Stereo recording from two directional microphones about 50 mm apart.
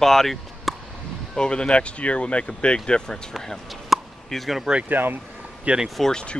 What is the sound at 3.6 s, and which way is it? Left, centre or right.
Chop, centre.